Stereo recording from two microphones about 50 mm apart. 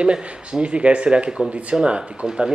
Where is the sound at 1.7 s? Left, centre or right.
Centre.